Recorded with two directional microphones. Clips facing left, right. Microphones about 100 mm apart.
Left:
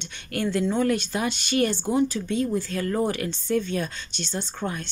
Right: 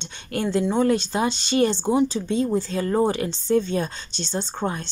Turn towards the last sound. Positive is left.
turn(degrees=-30)  # may be behind; listen again after turning